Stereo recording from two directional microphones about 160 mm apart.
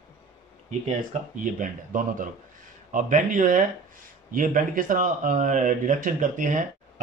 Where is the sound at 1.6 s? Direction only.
55° right (ahead or behind).